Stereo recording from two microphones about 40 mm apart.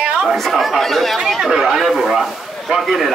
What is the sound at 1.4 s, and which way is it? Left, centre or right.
Speech, centre.